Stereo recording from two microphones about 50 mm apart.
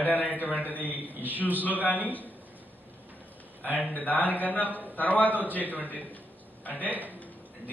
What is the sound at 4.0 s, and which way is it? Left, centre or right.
A man's voice, left.